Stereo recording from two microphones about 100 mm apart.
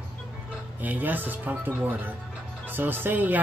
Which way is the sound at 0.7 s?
15° right (ahead or behind).